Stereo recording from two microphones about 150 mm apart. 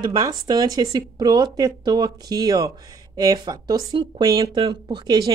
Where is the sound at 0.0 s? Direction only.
25° right (ahead or behind).